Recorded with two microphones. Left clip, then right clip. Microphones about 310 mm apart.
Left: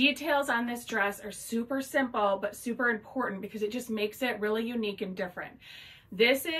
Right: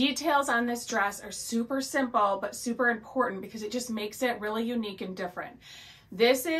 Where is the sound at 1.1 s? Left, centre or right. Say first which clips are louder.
Right 1 dB; right.